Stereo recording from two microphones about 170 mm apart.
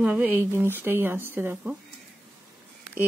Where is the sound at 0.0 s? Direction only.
10° right (ahead or behind).